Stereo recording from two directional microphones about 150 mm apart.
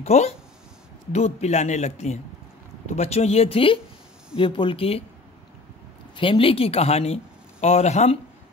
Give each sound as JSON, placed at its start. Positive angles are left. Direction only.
{"t": 0.0, "sound": "speech", "side_deg": 45}
{"t": 6.1, "sound": "speech", "side_deg": 35}